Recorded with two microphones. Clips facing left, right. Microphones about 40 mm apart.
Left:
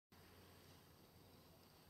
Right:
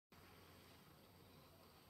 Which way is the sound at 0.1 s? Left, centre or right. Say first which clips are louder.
Right 1 dB; centre.